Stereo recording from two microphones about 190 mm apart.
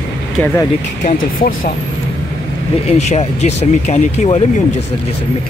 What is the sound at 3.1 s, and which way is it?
Speech, 35° left (ahead or behind).